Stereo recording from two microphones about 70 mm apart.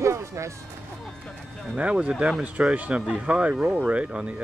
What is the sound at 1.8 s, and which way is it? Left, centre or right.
Speech, centre.